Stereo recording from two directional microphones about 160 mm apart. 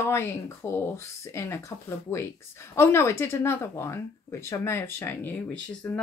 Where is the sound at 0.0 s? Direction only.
15° left (ahead or behind).